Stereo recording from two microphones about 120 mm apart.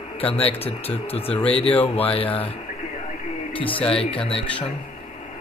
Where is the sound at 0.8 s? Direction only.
55° left (ahead or behind).